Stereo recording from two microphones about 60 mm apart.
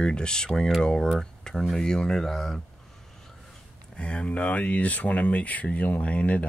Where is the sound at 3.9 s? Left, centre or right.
Centre.